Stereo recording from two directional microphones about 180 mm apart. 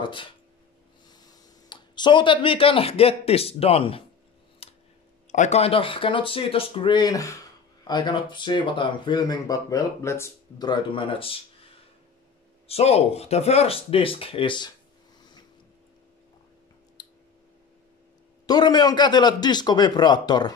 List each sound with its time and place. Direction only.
0.0 s speech: 25° left (ahead or behind)
4.6 s a sound: 35° left (ahead or behind)
5.3 s speech: 40° left (ahead or behind)
12.6 s speech: 35° left (ahead or behind)
17.0 s clicking: 20° left (ahead or behind)
18.5 s speech: 20° left (ahead or behind)